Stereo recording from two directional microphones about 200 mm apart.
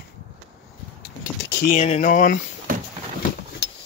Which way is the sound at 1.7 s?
35° left (ahead or behind).